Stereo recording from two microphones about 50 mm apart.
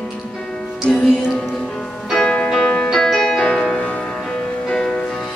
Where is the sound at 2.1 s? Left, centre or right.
Centre.